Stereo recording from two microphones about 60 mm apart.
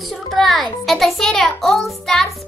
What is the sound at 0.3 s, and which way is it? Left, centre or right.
A child's voice, centre.